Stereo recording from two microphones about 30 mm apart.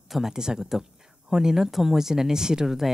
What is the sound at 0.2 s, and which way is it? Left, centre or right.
Speech, right.